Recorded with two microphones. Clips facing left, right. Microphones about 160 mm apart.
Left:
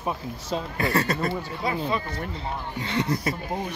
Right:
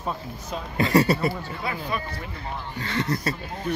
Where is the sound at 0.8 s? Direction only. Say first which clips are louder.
Right 6 dB; 15° right (ahead or behind).